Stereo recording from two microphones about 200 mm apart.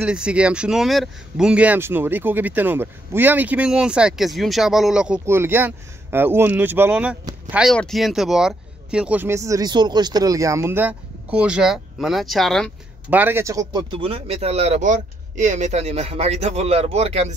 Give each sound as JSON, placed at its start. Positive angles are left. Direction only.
{"t": 0.0, "sound": "speech", "side_deg": -5}
{"t": 13.1, "sound": "speech", "side_deg": -10}